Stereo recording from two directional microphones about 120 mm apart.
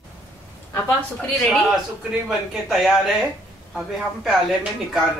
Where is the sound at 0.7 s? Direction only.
20° left (ahead or behind).